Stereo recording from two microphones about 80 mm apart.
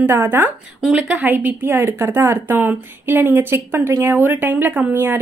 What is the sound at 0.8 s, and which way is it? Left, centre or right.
A woman's voice, centre.